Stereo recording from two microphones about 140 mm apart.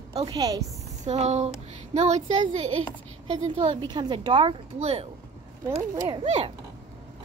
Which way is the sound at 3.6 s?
35° right (ahead or behind).